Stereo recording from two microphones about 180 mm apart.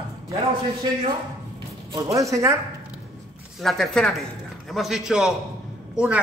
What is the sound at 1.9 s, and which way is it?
Speech, 20° right (ahead or behind).